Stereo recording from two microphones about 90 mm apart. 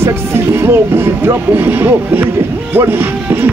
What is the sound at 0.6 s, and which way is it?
Speech, 25° right (ahead or behind).